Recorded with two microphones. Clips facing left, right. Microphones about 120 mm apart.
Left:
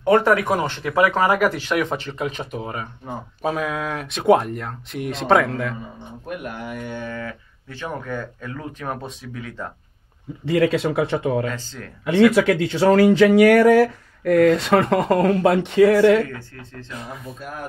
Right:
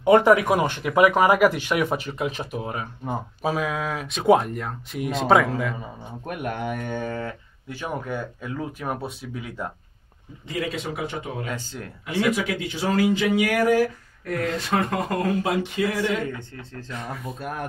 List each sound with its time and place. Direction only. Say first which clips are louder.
0.0 s speech: right 1 dB; 15° right (ahead or behind)
6.2 s speech: right 2 dB; 60° right (ahead or behind); by 7.2 s 45° right (ahead or behind)
7.7 s speech: left 1 dB; 10° right (ahead or behind)
10.4 s speech: left 10 dB; 70° left (ahead or behind)
11.4 s speech: left 3 dB; 10° right (ahead or behind)
12.4 s speech: left 9 dB; 70° left (ahead or behind)
17.4 s speech: right 3 dB; 60° right (ahead or behind)